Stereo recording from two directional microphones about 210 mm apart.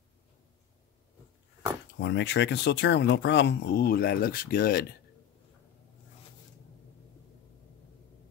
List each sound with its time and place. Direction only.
2.0 s speech: 60° left (ahead or behind)